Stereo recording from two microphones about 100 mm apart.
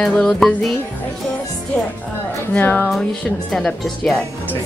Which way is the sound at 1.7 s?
10° left (ahead or behind).